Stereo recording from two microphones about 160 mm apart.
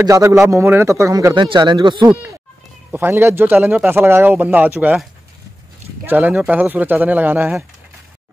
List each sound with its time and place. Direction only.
0.0 s a man's voice: 20° right (ahead or behind)
2.9 s speech: 15° right (ahead or behind)
6.0 s speech: 10° right (ahead or behind)